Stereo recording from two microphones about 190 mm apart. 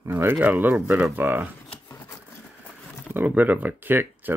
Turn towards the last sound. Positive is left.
turn(degrees=-10)  # may be behind; listen again after turning